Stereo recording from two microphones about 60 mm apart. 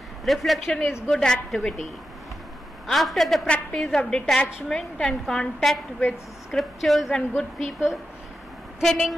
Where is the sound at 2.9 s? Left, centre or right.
Centre.